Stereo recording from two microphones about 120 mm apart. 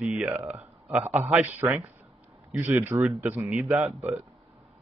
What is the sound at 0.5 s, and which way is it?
Speech, 10° right (ahead or behind).